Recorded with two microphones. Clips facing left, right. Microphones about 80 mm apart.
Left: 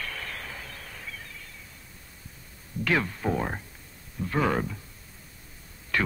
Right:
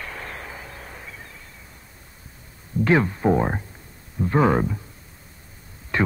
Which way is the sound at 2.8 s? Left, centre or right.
Right.